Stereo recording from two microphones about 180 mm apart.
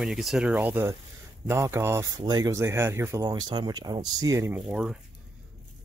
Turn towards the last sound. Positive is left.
turn(degrees=-5)  # may be behind; listen again after turning